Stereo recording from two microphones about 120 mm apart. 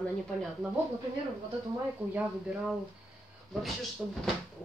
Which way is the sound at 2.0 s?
15° right (ahead or behind).